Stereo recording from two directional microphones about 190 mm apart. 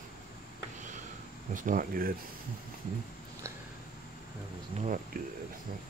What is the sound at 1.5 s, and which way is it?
Speech, 45° right (ahead or behind).